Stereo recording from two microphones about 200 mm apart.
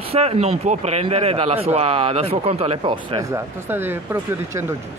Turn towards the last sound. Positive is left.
turn(degrees=-10)  # may be behind; listen again after turning